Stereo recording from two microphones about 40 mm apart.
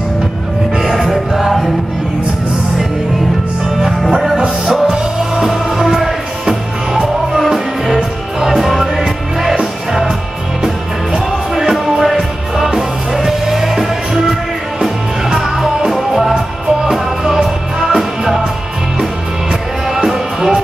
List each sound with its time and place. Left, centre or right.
1.1 s music: centre
4.3 s music: centre
11.7 s music: centre
20.3 s music: centre